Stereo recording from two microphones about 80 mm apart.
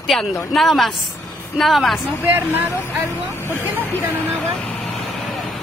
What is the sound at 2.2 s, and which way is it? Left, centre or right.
Speech, right.